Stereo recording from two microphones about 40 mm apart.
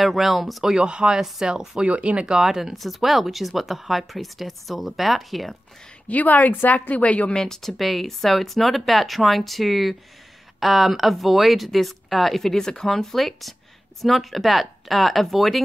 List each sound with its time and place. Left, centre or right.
0.0 s speech: centre
0.7 s speech: right
1.8 s speech: right
2.4 s speech: centre
6.0 s a woman's voice: left
7.3 s speech: centre
12.5 s speech: centre